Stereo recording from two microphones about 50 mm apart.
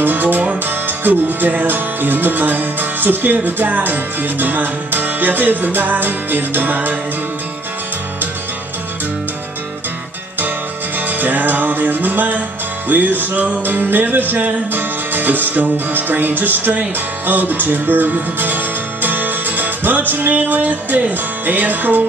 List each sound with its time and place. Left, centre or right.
0.0 s music: right
11.1 s music: right